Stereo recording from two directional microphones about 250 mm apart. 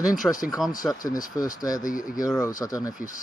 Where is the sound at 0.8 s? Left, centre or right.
Centre.